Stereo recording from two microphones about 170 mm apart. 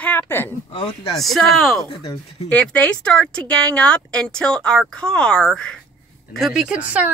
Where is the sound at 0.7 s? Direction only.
30° left (ahead or behind).